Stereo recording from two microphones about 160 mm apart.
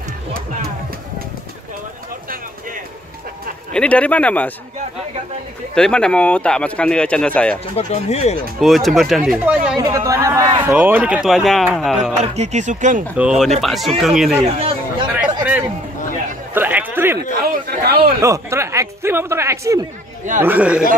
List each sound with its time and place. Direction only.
3.7 s a man's voice: 5° left (ahead or behind)
5.8 s speech: 5° left (ahead or behind)
7.7 s speech: 40° left (ahead or behind)
8.5 s speech: centre (ahead or behind)
9.8 s speech: 20° right (ahead or behind)
10.7 s speech: 10° right (ahead or behind)
12.2 s speech: 45° right (ahead or behind)
13.1 s speech: 5° right (ahead or behind)
14.6 s chatter: 40° right (ahead or behind)
15.0 s a sound: 10° right (ahead or behind)
17.6 s a man's voice: 75° right (ahead or behind)
18.2 s speech: 15° right (ahead or behind)
20.4 s speech: 10° right (ahead or behind)